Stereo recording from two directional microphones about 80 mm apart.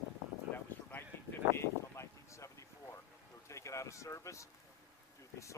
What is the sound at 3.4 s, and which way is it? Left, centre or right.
Speech, left.